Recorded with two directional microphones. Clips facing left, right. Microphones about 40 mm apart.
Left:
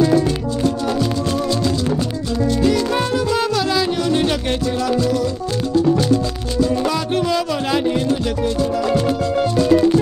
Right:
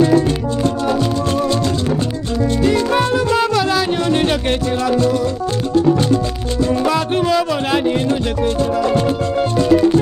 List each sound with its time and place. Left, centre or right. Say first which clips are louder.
0.7 s music: right 2 dB; right
2.7 s music: right 3 dB; right
5.9 s music: right 1 dB; right
6.7 s music: right 3 dB; right
8.5 s music: right 2 dB; right